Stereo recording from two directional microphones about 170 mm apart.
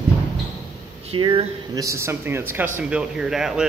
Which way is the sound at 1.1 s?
30° right (ahead or behind).